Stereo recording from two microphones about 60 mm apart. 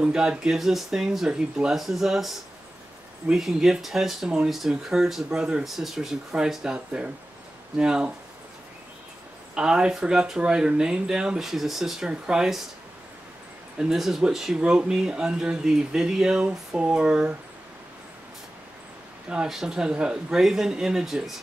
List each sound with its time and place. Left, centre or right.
0.0 s speech: centre
9.6 s speech: centre
13.7 s speech: centre
14.6 s speech: centre
19.2 s speech: centre